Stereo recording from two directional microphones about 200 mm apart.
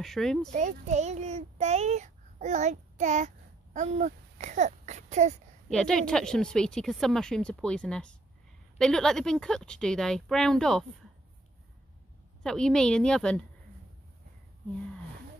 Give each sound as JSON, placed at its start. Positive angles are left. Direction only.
{"t": 0.0, "sound": "a woman's voice", "side_deg": 0}
{"t": 0.5, "sound": "a child's voice", "side_deg": -35}
{"t": 5.7, "sound": "a woman's voice", "side_deg": 5}
{"t": 12.4, "sound": "a woman's voice", "side_deg": 5}